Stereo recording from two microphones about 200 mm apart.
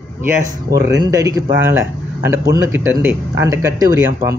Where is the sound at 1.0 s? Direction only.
15° right (ahead or behind).